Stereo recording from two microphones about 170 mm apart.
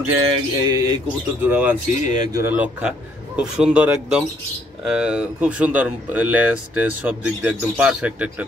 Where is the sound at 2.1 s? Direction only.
20° right (ahead or behind).